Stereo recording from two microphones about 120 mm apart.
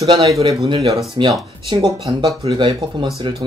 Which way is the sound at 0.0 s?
50° right (ahead or behind).